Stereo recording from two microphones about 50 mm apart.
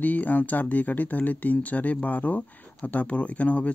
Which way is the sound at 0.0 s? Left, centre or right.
Left.